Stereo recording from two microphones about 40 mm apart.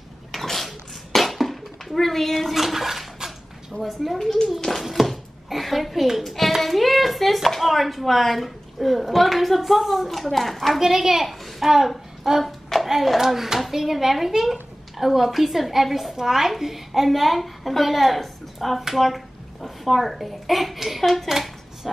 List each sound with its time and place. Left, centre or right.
0.3 s a sound: centre
2.5 s bathtub: centre
3.8 s a child's voice: centre
4.8 s hands: centre
10.8 s a child's voice: centre